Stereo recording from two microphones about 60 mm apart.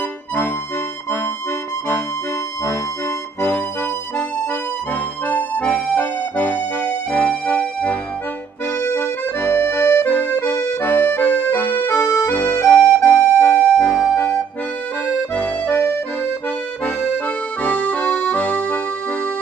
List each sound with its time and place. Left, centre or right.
3.3 s music: left
5.3 s music: left
8.8 s accordion: left
10.0 s accordion: left
11.9 s music: left
12.3 s music: left
15.3 s accordion: left
17.6 s music: left